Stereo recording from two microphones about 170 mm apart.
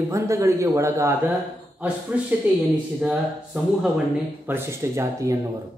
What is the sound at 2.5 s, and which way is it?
A man's voice, 10° right (ahead or behind).